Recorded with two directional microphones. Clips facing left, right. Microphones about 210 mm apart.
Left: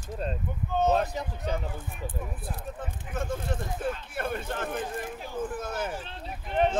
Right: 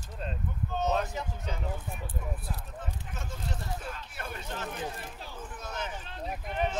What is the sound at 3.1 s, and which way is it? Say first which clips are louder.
Speech: left 11 dB; 55° left (ahead or behind).